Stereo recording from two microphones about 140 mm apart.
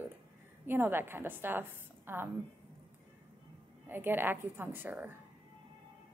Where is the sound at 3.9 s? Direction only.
15° right (ahead or behind).